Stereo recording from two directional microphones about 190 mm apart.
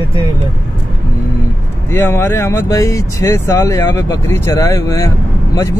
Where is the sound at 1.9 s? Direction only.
10° left (ahead or behind).